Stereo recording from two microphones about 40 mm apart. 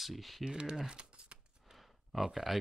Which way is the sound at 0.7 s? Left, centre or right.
Centre.